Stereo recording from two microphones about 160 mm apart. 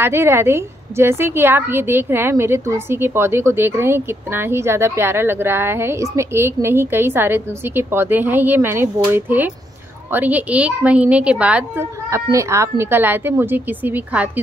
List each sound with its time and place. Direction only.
0.0 s a woman's voice: 15° right (ahead or behind)
12.1 s a woman's voice: 20° right (ahead or behind)